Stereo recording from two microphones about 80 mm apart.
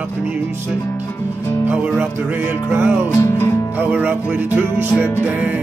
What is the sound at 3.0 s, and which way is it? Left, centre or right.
Speech, left.